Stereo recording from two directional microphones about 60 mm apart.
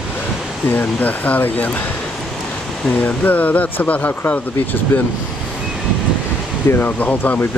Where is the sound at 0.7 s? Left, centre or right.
Left.